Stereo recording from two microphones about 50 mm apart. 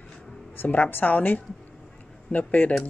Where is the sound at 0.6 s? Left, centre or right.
Left.